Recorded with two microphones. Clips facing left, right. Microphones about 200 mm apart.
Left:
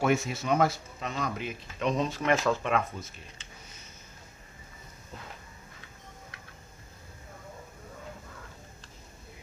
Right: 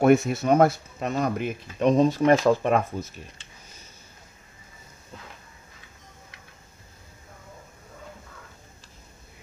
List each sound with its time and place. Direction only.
0.0 s speech: 60° right (ahead or behind); by 2.8 s 40° right (ahead or behind)